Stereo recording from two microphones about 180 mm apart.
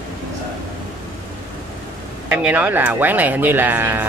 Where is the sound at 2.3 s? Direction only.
10° right (ahead or behind).